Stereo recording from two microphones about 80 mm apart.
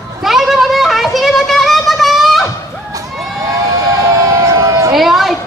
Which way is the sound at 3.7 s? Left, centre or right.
Right.